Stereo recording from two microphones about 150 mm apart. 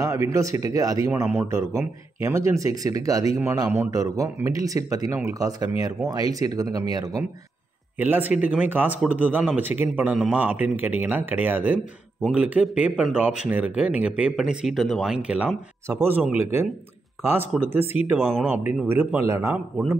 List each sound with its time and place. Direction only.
0.0 s speech: 20° right (ahead or behind)
8.0 s speech: 10° right (ahead or behind)
18.2 s speech: centre (ahead or behind)
18.5 s speech: 10° right (ahead or behind)